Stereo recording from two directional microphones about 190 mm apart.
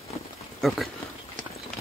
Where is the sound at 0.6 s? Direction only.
Centre (ahead or behind).